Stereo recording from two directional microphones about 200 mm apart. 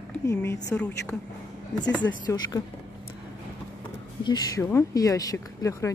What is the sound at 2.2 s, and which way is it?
Speech, 20° left (ahead or behind).